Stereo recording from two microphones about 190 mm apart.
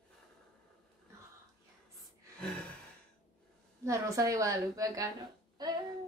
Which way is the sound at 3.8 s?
15° right (ahead or behind).